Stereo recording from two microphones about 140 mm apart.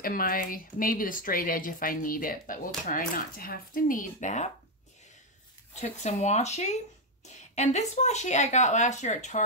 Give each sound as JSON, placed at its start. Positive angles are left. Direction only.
{"t": 0.0, "sound": "speech", "side_deg": 90}
{"t": 5.8, "sound": "speech", "side_deg": 55}